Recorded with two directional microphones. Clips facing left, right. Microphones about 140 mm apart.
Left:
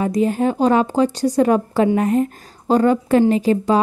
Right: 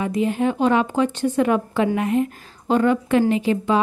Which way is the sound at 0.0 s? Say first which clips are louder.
Left 3 dB; 40° left (ahead or behind).